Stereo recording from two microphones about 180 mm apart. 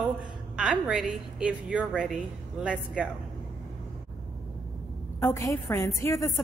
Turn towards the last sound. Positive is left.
turn(degrees=15)  # may be behind; listen again after turning